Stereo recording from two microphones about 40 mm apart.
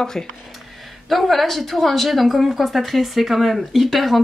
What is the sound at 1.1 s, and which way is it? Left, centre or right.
Speech, centre.